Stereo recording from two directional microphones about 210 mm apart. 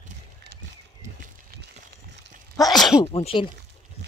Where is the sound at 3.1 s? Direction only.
25° left (ahead or behind).